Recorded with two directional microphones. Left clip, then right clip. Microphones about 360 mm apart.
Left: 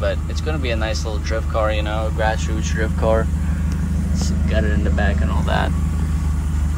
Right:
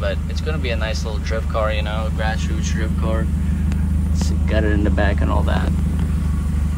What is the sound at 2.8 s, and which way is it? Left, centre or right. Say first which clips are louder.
Speech: left 9 dB; left.